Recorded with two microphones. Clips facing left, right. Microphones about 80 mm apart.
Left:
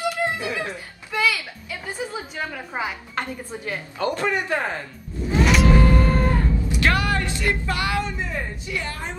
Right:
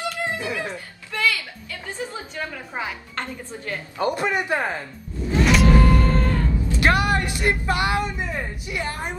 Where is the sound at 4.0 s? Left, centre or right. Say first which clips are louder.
Right 1 dB; centre.